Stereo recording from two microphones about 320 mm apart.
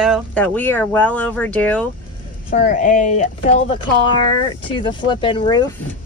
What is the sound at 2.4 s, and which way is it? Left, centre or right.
Speech, left.